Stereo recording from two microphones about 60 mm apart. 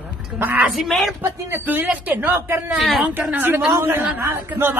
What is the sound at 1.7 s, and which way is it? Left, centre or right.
Speech, right.